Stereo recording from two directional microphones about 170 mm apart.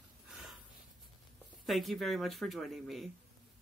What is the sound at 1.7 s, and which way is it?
Speech, centre (ahead or behind).